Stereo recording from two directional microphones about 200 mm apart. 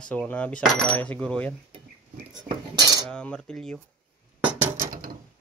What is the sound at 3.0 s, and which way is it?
Cutlery, 5° left (ahead or behind).